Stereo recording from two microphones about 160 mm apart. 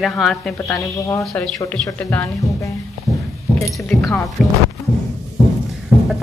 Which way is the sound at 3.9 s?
5° left (ahead or behind).